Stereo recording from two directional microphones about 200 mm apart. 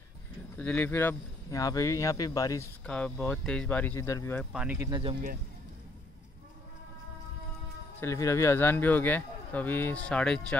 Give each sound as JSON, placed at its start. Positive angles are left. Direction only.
{"t": 0.6, "sound": "speech", "side_deg": 5}
{"t": 4.5, "sound": "speech", "side_deg": -5}
{"t": 4.8, "sound": "speech", "side_deg": -20}
{"t": 8.0, "sound": "speech", "side_deg": 15}